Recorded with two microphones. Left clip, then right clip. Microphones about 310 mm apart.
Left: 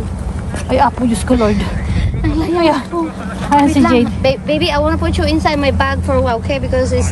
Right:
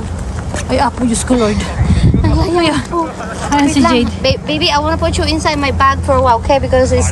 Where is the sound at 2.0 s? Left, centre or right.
Centre.